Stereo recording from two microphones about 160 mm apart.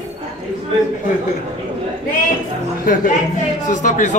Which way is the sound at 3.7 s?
50° left (ahead or behind).